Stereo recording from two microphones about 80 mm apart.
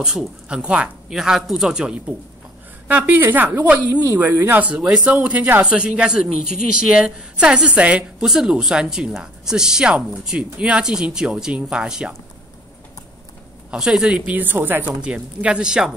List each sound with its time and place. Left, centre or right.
0.0 s speech: centre
2.9 s a woman's voice: right
3.9 s a woman's voice: right
4.2 s speech: right; by 12.1 s centre
13.7 s speech: centre
14.3 s a woman's voice: right; by 15.9 s centre